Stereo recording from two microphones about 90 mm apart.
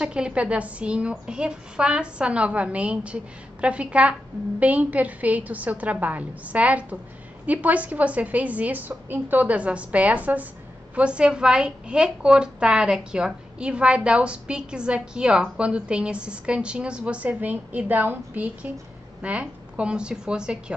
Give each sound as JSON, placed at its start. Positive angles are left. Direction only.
{"t": 0.0, "sound": "a woman's voice", "side_deg": -10}